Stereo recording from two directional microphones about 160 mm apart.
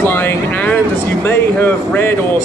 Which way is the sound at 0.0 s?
10° left (ahead or behind).